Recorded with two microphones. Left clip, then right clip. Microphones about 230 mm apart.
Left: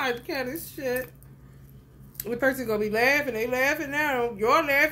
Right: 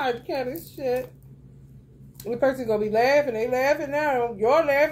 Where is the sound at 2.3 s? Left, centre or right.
Left.